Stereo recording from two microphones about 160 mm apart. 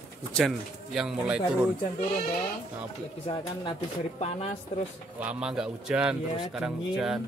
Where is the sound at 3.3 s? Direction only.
35° left (ahead or behind).